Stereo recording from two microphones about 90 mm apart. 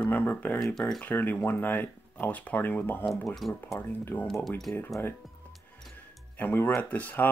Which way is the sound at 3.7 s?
25° left (ahead or behind).